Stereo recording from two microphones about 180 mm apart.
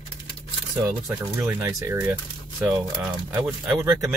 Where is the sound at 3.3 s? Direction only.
10° right (ahead or behind).